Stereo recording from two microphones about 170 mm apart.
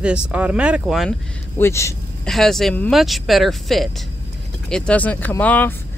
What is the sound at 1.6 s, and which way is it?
Speech, 15° left (ahead or behind).